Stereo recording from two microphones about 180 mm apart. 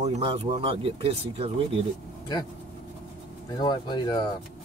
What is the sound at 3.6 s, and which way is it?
Speech, 25° left (ahead or behind).